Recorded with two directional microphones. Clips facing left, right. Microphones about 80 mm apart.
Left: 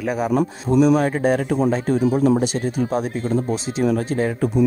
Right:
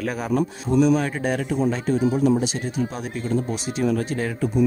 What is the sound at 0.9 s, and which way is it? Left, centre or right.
Speech, left.